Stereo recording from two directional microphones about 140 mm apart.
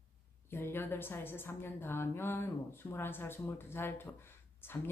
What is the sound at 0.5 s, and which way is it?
A woman's voice, 15° left (ahead or behind).